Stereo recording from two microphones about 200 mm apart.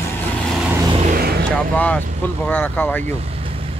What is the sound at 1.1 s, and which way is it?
Vehicle, 50° right (ahead or behind).